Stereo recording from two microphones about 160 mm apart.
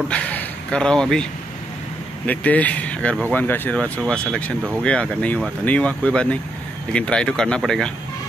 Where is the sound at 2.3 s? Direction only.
10° left (ahead or behind).